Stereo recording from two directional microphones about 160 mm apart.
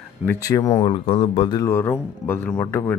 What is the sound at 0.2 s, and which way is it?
Speech, 10° left (ahead or behind).